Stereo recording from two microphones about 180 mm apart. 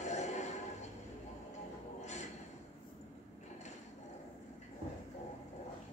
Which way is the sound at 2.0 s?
40° left (ahead or behind).